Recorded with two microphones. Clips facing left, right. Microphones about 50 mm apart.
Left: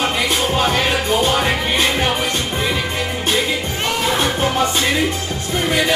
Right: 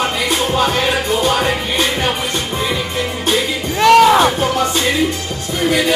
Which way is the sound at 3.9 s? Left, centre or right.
Right.